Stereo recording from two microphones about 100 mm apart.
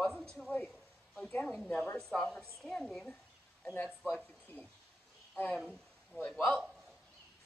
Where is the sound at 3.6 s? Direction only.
20° left (ahead or behind).